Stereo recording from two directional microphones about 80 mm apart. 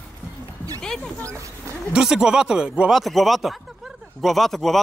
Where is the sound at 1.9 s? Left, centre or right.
Centre.